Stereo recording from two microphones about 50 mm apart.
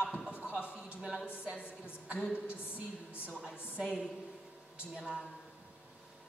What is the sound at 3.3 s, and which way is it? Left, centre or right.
Speech, centre.